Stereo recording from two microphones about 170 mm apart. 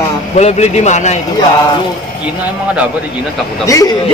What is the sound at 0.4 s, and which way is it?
Speech, 40° left (ahead or behind).